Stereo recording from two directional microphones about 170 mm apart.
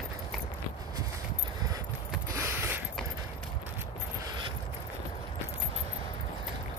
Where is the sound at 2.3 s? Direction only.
10° right (ahead or behind).